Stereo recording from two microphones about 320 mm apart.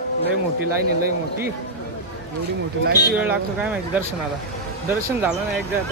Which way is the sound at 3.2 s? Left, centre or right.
Centre.